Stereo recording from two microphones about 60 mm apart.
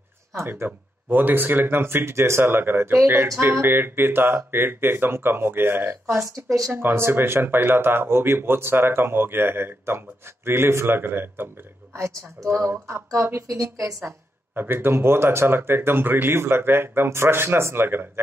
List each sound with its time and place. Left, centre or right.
0.4 s speech: right
6.1 s speech: right
6.7 s speech: right
12.4 s speech: right
13.5 s a woman's voice: right
14.5 s speech: right